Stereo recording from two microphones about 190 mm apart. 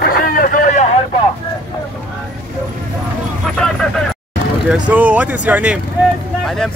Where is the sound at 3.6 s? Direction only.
5° left (ahead or behind).